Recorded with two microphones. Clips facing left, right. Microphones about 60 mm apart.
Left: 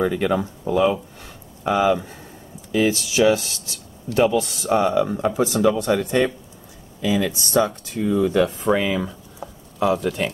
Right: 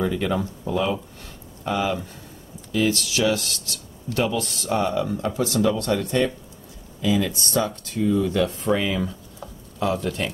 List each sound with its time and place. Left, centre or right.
0.2 s speech: centre